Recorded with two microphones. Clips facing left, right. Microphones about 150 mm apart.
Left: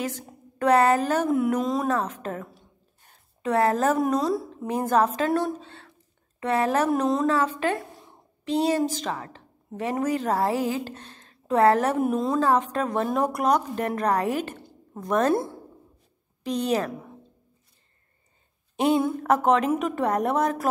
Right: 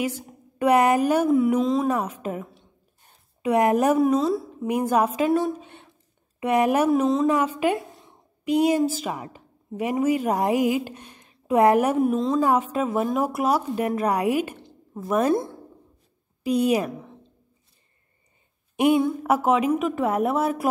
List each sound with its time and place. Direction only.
0.0 s a woman's voice: 10° right (ahead or behind)
1.6 s a woman's voice: centre (ahead or behind)
1.9 s a woman's voice: 10° right (ahead or behind)
4.0 s a woman's voice: 5° right (ahead or behind)
4.6 s a woman's voice: 15° right (ahead or behind)
5.7 s a sound: 20° right (ahead or behind)
6.4 s a woman's voice: 15° right (ahead or behind)
6.9 s a woman's voice: centre (ahead or behind)
7.2 s a woman's voice: 10° right (ahead or behind)
12.0 s a woman's voice: centre (ahead or behind)
12.4 s a woman's voice: 10° right (ahead or behind)
16.4 s a woman's voice: 10° right (ahead or behind)
18.9 s a woman's voice: 5° right (ahead or behind)